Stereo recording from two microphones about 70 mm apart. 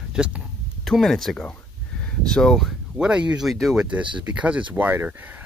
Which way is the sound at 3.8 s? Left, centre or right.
Centre.